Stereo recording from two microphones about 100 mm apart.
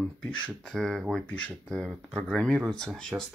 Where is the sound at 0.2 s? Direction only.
10° left (ahead or behind).